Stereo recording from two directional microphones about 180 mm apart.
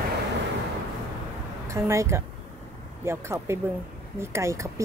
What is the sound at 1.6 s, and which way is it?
A woman's voice, 15° right (ahead or behind).